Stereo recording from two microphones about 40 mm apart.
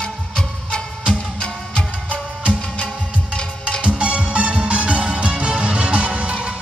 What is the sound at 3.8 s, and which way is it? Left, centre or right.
Music, right.